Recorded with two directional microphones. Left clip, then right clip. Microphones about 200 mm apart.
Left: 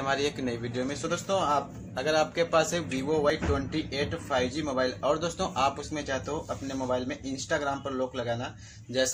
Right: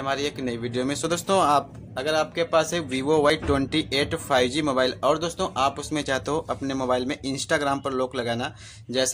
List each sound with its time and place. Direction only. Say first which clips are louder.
0.0 s speech: right 2 dB; 15° right (ahead or behind)
0.7 s a man's voice: right 7 dB; 35° right (ahead or behind)
2.0 s a man's voice: right 2 dB; 20° right (ahead or behind)
5.9 s speech: right 7 dB; 40° right (ahead or behind)